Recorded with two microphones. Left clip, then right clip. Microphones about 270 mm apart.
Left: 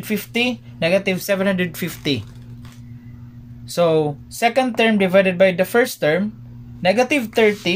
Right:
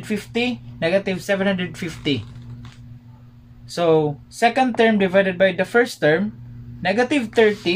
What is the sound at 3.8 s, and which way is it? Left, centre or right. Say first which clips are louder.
Speech: left 1 dB; left.